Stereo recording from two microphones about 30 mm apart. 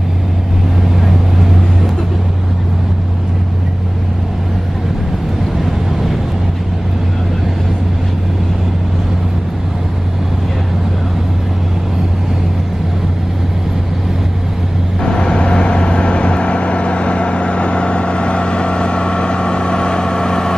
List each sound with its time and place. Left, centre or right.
15.1 s vehicle: left